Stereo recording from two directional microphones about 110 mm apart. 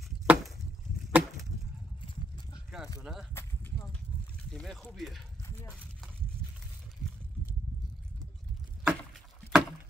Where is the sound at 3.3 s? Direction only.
25° left (ahead or behind).